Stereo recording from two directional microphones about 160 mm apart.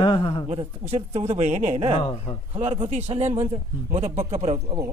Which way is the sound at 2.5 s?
35° right (ahead or behind).